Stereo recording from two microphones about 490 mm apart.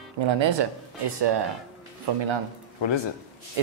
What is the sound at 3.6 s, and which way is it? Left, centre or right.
Speech, right.